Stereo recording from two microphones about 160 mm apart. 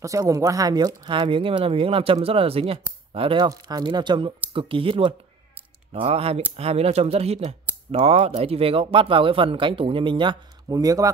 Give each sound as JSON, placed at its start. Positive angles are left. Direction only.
{"t": 0.0, "sound": "speech", "side_deg": -20}
{"t": 3.4, "sound": "speech", "side_deg": -25}